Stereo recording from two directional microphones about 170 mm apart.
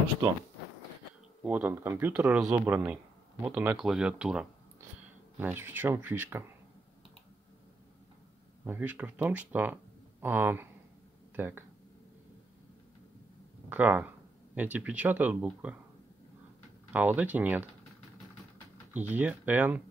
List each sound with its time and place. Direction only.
1.4 s speech: 10° right (ahead or behind)
8.6 s speech: 10° right (ahead or behind)
13.7 s speech: 10° right (ahead or behind)
16.9 s speech: 10° right (ahead or behind)
18.9 s speech: 10° right (ahead or behind)